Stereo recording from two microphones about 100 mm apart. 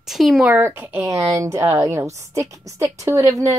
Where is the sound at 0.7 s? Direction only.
25° right (ahead or behind).